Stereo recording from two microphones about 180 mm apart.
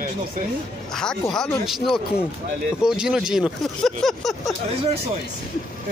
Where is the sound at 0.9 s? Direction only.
5° left (ahead or behind).